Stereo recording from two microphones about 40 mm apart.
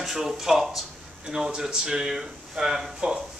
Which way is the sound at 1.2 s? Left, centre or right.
Right.